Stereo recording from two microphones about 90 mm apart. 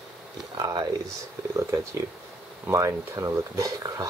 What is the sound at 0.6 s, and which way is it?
Speech, 50° right (ahead or behind).